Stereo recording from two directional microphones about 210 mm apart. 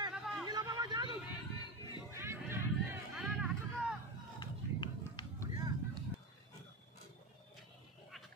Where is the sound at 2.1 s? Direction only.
10° right (ahead or behind).